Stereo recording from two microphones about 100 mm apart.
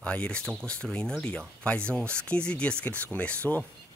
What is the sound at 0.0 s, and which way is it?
Speech, 10° left (ahead or behind).